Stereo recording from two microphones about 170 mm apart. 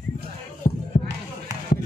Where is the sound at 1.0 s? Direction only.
75° left (ahead or behind).